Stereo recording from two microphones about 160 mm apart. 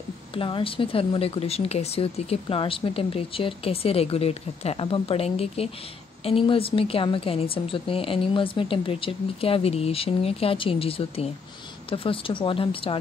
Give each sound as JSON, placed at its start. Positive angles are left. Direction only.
{"t": 0.3, "sound": "speech", "side_deg": 30}